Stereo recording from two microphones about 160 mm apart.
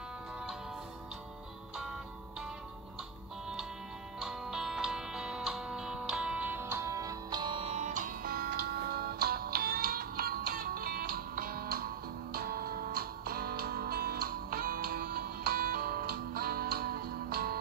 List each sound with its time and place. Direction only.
4.2 s music: 5° right (ahead or behind); by 17.6 s 75° right (ahead or behind)